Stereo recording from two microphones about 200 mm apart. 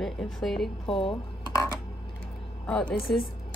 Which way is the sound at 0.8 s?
25° left (ahead or behind).